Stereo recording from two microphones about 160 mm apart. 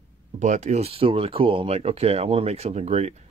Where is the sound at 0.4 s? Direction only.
50° right (ahead or behind).